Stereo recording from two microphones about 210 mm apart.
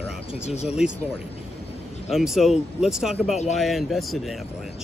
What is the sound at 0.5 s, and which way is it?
Speech, 30° left (ahead or behind).